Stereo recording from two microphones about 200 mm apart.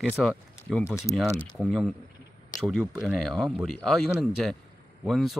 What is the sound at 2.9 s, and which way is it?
Speech, centre (ahead or behind).